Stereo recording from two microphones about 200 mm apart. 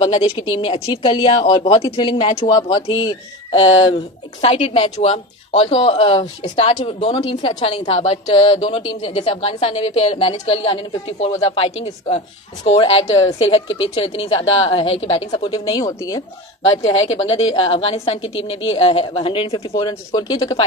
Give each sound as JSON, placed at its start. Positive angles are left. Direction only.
{"t": 0.0, "sound": "a woman's voice", "side_deg": 30}
{"t": 16.6, "sound": "a woman's voice", "side_deg": 30}